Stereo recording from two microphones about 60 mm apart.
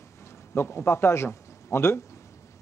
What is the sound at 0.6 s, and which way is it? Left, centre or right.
A man's voice, left.